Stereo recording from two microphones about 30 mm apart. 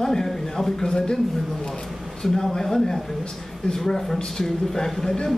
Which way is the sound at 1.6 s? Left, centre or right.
Left.